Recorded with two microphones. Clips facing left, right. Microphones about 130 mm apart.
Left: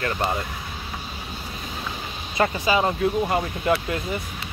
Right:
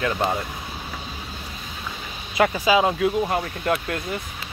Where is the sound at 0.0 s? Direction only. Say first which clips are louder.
Right 2 dB; 5° right (ahead or behind).